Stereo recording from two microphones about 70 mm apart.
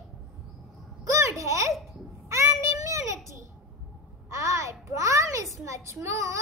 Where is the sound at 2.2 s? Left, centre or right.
Right.